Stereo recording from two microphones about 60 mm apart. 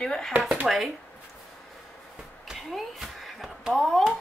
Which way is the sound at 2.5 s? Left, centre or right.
Centre.